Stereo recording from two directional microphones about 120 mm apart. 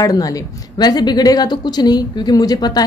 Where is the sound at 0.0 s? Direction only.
30° left (ahead or behind).